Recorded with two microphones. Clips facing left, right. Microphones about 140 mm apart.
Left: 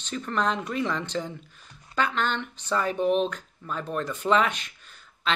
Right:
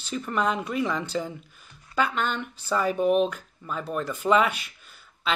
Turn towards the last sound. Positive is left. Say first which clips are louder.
# left 1 dB
turn(degrees=-5)  # may be behind; listen again after turning